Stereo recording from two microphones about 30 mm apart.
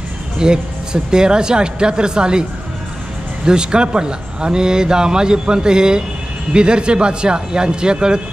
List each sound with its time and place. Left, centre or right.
0.4 s speech: right
3.4 s a man's voice: right